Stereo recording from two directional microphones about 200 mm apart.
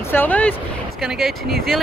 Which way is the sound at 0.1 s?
10° left (ahead or behind).